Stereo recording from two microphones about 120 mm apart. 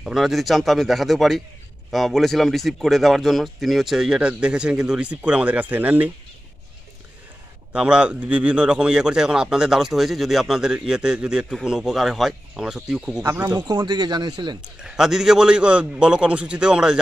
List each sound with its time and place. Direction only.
0.0 s a man's voice: centre (ahead or behind)
7.7 s a man's voice: 10° right (ahead or behind)
13.2 s speech: 30° right (ahead or behind)
14.8 s a man's voice: 5° right (ahead or behind)